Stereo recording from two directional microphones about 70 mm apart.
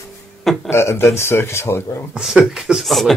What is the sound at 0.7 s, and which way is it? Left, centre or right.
Speech, left.